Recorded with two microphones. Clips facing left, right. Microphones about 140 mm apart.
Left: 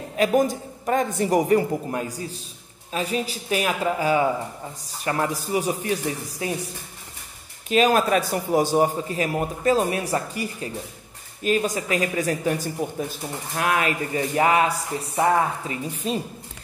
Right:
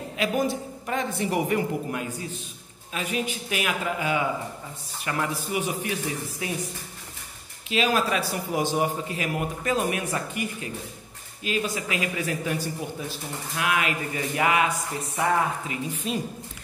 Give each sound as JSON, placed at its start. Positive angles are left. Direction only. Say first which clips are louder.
{"t": 0.2, "sound": "speech", "louder": "left 5 dB", "side_deg": 45}
{"t": 7.7, "sound": "speech", "louder": "left 5 dB", "side_deg": 45}